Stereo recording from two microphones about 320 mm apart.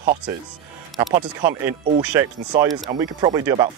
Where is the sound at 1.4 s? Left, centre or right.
Centre.